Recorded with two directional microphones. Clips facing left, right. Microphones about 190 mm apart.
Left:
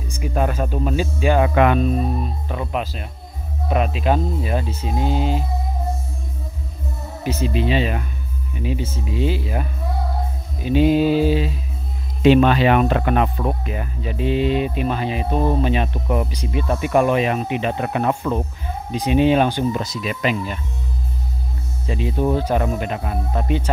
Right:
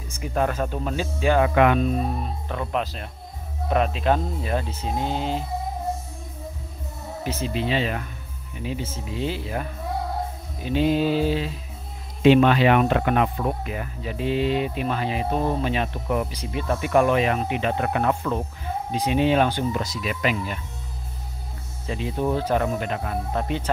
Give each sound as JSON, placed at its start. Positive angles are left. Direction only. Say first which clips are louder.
{"t": 0.1, "sound": "speech", "louder": "left 2 dB", "side_deg": 15}
{"t": 1.5, "sound": "speech", "louder": "left 2 dB", "side_deg": 35}
{"t": 2.4, "sound": "speech", "louder": "left 2 dB", "side_deg": 10}
{"t": 7.2, "sound": "speech", "louder": "left 5 dB", "side_deg": 15}
{"t": 12.2, "sound": "speech", "louder": "left 2 dB", "side_deg": 35}
{"t": 21.8, "sound": "speech", "louder": "left 4 dB", "side_deg": 15}